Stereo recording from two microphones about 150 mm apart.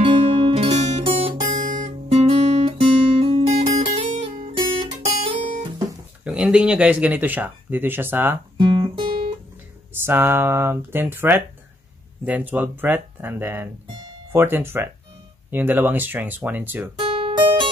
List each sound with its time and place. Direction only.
0.0 s music: 45° right (ahead or behind)
1.5 s guitar: 55° right (ahead or behind)
5.3 s guitar: 35° right (ahead or behind)
6.2 s speech: 5° right (ahead or behind)
8.5 s guitar: 35° right (ahead or behind)
10.0 s speech: 15° right (ahead or behind)
17.0 s music: 40° right (ahead or behind)